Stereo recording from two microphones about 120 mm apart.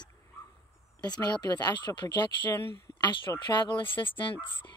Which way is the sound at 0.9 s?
35° left (ahead or behind).